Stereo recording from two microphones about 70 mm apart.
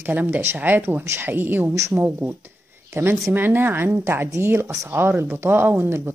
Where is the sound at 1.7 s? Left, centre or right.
Right.